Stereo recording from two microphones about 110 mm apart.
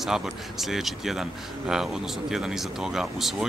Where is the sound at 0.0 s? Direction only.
Centre (ahead or behind).